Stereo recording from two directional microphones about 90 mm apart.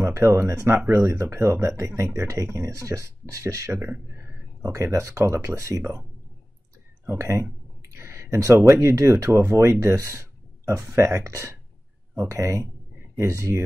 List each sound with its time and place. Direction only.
0.0 s speech: 30° right (ahead or behind)
7.2 s speech: 30° right (ahead or behind)
7.9 s a sound: 30° right (ahead or behind)
8.8 s speech: 30° right (ahead or behind)